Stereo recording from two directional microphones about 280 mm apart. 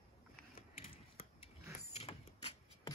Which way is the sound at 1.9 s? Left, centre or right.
Left.